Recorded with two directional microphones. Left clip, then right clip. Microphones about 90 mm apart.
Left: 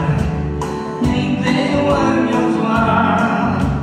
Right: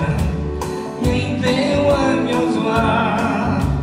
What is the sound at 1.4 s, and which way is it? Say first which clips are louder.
Music: right 1 dB; 50° left (ahead or behind).